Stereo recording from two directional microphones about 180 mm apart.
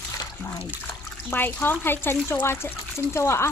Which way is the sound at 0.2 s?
20° left (ahead or behind).